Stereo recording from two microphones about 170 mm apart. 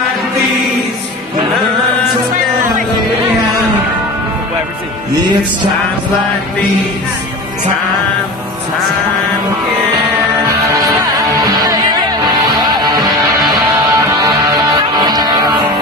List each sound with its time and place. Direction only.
10.8 s music: 25° right (ahead or behind)